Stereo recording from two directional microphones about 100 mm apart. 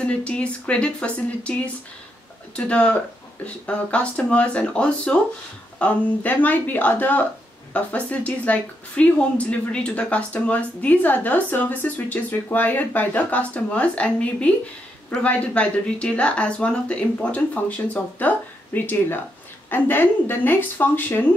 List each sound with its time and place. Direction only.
0.0 s a woman's voice: 10° left (ahead or behind)